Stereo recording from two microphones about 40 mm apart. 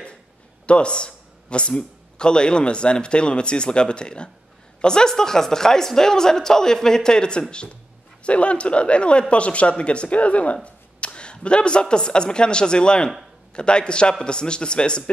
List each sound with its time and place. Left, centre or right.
0.7 s a woman's voice: left